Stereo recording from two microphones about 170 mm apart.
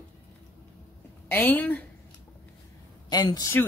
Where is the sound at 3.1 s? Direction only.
25° left (ahead or behind).